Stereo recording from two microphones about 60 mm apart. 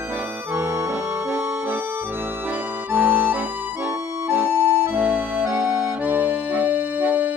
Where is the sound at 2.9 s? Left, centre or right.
Right.